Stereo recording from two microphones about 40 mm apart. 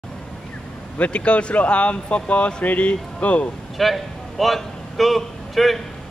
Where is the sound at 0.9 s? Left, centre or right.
Left.